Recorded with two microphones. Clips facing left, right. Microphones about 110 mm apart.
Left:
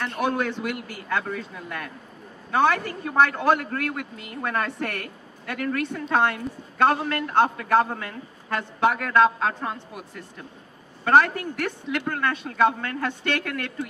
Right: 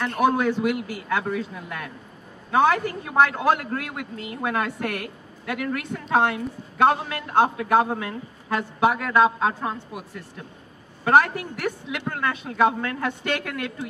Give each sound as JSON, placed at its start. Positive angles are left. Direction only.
{"t": 0.2, "sound": "a man's voice", "side_deg": -10}